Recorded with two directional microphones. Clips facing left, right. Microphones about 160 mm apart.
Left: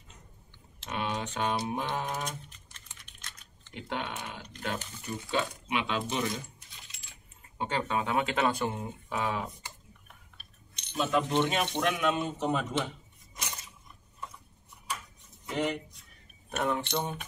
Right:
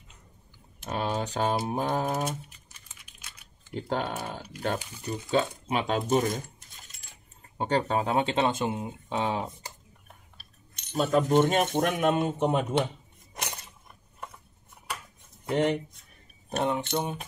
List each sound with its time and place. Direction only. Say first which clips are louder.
0.8 s speech: right 4 dB; 35° right (ahead or behind)
2.2 s typing: right 6 dB; 5° right (ahead or behind)
3.7 s speech: right 6 dB; 40° right (ahead or behind)
4.7 s speech: right 3 dB; 10° right (ahead or behind)
5.3 s speech: right 5 dB; 35° right (ahead or behind)
6.7 s keys jangling: right 1 dB; 45° right (ahead or behind); by 8.9 s 15° right (ahead or behind)
9.1 s speech: right 3 dB; 25° right (ahead or behind)
10.0 s speech: right 2 dB; 40° right (ahead or behind)
13.3 s a sound: right 4 dB; 60° right (ahead or behind)
15.4 s speech: right 6 dB; 55° right (ahead or behind)
16.9 s speech: right 3 dB; 15° right (ahead or behind)